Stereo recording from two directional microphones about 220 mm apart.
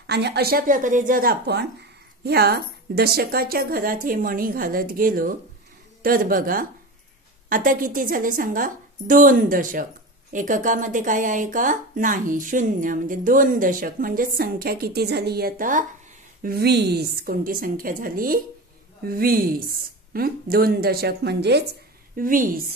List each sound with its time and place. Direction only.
0.0 s speech: 50° right (ahead or behind)
22.1 s speech: 40° right (ahead or behind)